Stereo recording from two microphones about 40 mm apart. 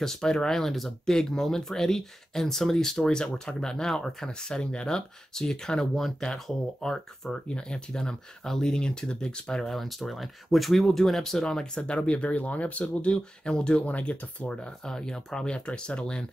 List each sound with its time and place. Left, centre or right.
0.0 s speech: centre
7.2 s speech: left
9.7 s speech: centre
12.0 s speech: left
13.5 s speech: left
13.7 s speech: left
14.9 s speech: centre